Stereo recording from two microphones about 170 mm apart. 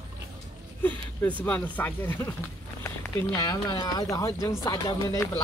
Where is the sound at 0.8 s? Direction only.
10° left (ahead or behind).